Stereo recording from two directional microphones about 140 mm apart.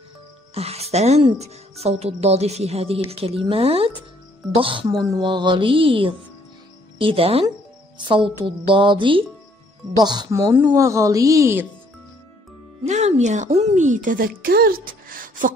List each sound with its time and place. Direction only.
0.6 s a woman's voice: 45° right (ahead or behind)
4.6 s music: 40° right (ahead or behind)
9.9 s a woman's voice: 30° right (ahead or behind)
12.8 s a woman's voice: 55° right (ahead or behind); by 15.5 s 75° right (ahead or behind)